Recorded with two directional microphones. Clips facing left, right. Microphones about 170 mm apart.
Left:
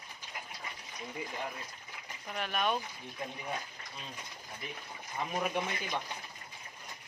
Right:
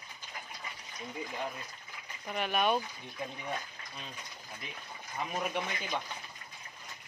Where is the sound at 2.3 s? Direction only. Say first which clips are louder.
Right 3 dB; 5° right (ahead or behind).